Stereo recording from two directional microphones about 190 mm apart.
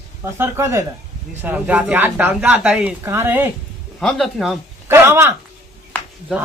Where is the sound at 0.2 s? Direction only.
15° right (ahead or behind).